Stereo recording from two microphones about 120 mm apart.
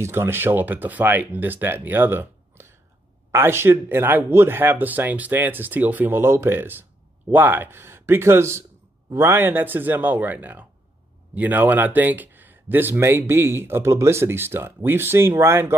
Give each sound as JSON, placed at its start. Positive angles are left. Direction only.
{"t": 0.0, "sound": "speech", "side_deg": -20}